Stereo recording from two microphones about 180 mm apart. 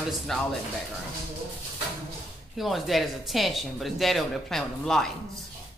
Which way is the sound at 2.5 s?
Centre (ahead or behind).